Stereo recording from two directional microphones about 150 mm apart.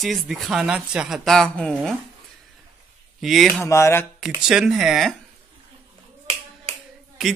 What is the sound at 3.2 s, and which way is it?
Speech, centre (ahead or behind).